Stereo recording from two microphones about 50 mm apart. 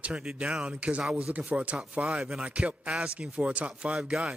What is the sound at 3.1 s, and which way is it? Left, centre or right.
Speech, right.